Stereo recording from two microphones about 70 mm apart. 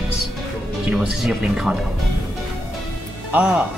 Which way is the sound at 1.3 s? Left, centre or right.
Centre.